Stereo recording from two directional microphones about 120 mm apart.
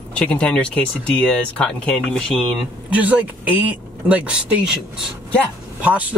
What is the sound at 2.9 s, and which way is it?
Speech, 10° right (ahead or behind).